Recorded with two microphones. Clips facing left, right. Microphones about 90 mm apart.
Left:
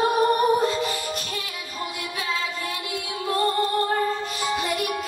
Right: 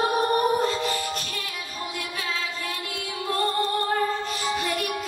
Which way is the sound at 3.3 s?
5° left (ahead or behind).